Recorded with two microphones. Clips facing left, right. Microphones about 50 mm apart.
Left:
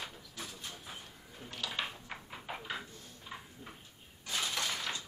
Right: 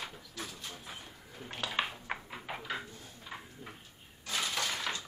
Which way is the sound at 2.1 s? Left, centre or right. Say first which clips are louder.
Right 2 dB; centre.